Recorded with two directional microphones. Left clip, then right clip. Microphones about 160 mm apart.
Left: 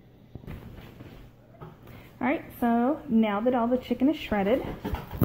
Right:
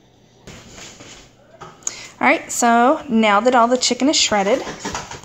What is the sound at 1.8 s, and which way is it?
Speech, 25° right (ahead or behind).